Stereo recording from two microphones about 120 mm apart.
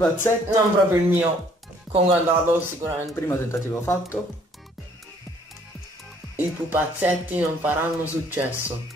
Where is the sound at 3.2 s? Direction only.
20° left (ahead or behind).